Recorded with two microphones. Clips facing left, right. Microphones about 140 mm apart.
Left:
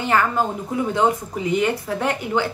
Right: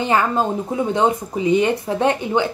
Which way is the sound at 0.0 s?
20° right (ahead or behind).